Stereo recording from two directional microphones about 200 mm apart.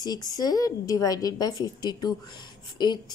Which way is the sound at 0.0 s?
20° left (ahead or behind).